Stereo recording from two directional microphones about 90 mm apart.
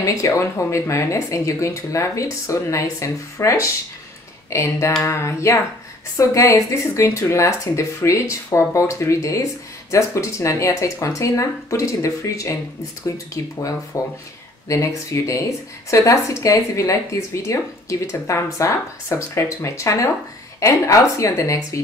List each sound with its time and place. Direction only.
0.0 s speech: 35° left (ahead or behind)